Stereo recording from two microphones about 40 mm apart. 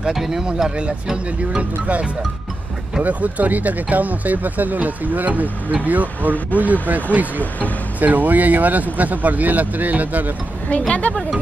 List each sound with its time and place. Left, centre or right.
0.0 s speech: centre
1.6 s speech: right
10.9 s speech: left